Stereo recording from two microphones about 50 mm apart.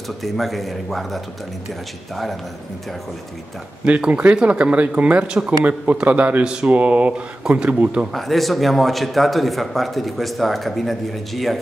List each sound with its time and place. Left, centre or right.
0.2 s a man's voice: centre
3.8 s speech: right
6.0 s a man's voice: right
6.4 s speech: centre
8.1 s a man's voice: centre